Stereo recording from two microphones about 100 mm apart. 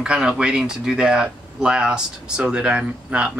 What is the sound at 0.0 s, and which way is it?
Speech, 10° right (ahead or behind).